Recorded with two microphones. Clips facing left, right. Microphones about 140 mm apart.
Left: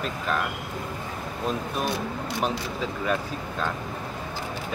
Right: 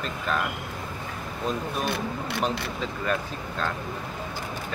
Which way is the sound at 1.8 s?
60° right (ahead or behind).